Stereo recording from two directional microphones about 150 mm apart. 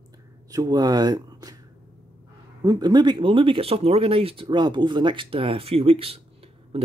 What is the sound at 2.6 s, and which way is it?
Speech, 30° right (ahead or behind).